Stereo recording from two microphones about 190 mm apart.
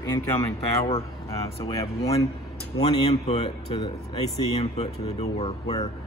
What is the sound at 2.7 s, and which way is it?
A man's voice, 25° left (ahead or behind).